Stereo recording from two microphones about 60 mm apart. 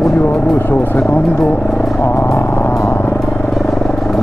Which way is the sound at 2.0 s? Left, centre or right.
Left.